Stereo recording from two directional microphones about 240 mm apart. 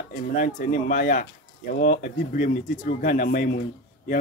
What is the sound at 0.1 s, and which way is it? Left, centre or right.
A man's voice, left.